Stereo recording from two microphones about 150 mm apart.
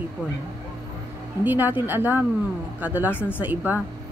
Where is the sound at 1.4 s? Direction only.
10° right (ahead or behind).